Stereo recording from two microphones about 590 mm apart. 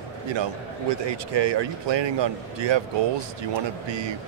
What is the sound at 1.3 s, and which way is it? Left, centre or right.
A man's voice, right.